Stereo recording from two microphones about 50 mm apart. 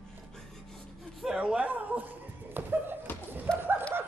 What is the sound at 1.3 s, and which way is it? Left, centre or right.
Speech, centre.